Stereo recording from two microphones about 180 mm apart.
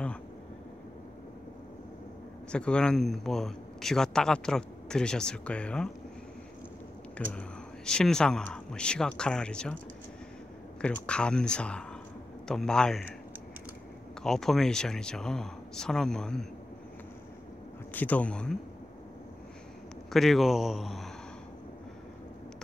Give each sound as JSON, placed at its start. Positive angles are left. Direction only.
{"t": 2.5, "sound": "a man's voice", "side_deg": 5}
{"t": 7.2, "sound": "a man's voice", "side_deg": 5}
{"t": 10.8, "sound": "a man's voice", "side_deg": 5}
{"t": 14.2, "sound": "a man's voice", "side_deg": 0}
{"t": 17.9, "sound": "speech", "side_deg": 10}
{"t": 20.1, "sound": "a man's voice", "side_deg": 0}